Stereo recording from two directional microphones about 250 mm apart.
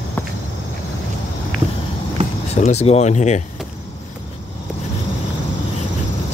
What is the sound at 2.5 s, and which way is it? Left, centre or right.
Speech, left.